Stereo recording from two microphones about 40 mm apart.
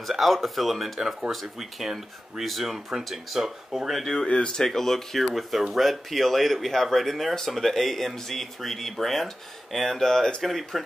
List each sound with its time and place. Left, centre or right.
0.1 s speech: centre
4.3 s speech: left
4.6 s speech: centre